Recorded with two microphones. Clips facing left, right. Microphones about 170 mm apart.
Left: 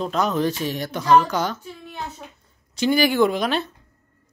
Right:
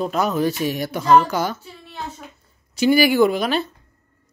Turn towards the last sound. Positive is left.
turn(degrees=0)  # may be behind; listen again after turning